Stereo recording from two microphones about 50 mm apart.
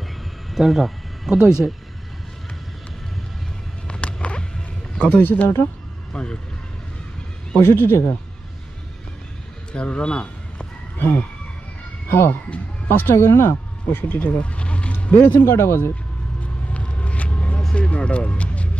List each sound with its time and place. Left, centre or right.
0.5 s speech: centre
3.8 s a sound: left
5.1 s speech: left
6.1 s speech: centre
7.6 s speech: left
9.7 s speech: left
11.0 s speech: left
13.8 s speech: left
14.4 s a sound: left
15.1 s speech: left
16.7 s vehicle: left
17.7 s speech: left